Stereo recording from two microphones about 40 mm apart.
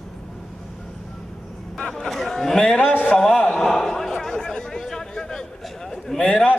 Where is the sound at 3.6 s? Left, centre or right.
Centre.